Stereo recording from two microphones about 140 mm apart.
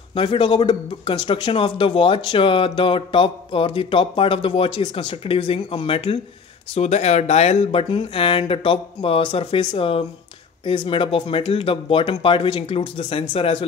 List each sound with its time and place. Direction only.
0.1 s speech: 35° left (ahead or behind)
6.7 s speech: 50° left (ahead or behind)